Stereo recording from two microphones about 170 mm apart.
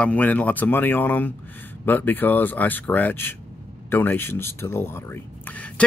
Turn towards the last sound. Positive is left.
turn(degrees=10)  # may be behind; listen again after turning